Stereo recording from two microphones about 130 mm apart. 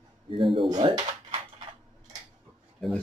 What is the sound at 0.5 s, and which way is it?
Speech, 40° right (ahead or behind).